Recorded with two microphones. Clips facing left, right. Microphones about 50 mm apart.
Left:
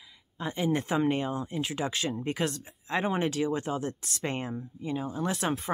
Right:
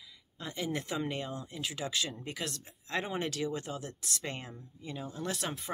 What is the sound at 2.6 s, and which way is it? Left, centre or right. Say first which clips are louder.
Speech: left 6 dB; centre.